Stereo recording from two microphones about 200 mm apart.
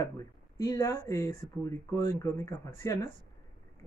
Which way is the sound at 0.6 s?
15° left (ahead or behind).